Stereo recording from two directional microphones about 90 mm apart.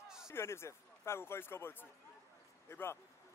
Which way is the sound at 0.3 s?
30° left (ahead or behind).